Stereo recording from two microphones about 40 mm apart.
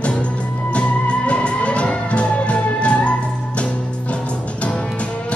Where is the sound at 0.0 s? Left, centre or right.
Left.